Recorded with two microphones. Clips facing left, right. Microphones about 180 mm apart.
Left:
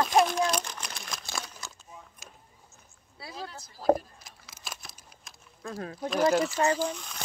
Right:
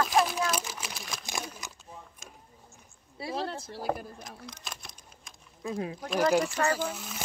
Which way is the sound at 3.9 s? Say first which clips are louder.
Left 9 dB; 40° left (ahead or behind).